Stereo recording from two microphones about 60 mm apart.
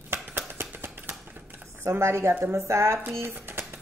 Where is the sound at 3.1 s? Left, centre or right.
Right.